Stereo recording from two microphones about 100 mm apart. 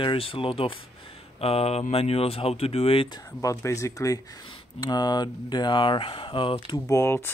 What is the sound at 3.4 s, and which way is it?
Speech, 30° left (ahead or behind).